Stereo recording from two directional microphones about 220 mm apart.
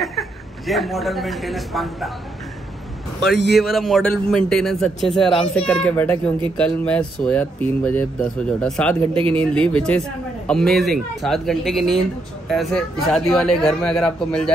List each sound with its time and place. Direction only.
0.0 s a woman's voice: centre (ahead or behind)
3.5 s a man's voice: centre (ahead or behind)
9.1 s a man's voice: 25° right (ahead or behind)
9.4 s a man's voice: 5° left (ahead or behind)